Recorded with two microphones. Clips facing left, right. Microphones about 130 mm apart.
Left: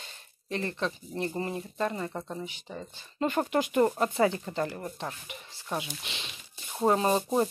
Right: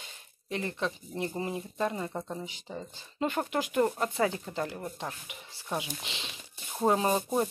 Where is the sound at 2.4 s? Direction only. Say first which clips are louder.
Left 1 dB; 20° right (ahead or behind).